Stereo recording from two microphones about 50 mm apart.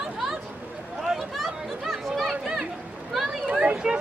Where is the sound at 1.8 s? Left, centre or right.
Centre.